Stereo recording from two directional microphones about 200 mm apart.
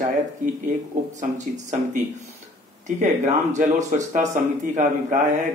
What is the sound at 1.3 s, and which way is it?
Speech, 40° right (ahead or behind).